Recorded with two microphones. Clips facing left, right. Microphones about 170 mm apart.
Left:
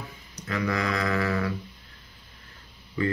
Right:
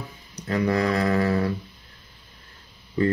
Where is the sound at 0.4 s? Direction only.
35° right (ahead or behind).